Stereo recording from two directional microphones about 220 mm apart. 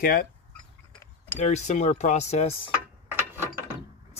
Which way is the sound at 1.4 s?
30° left (ahead or behind).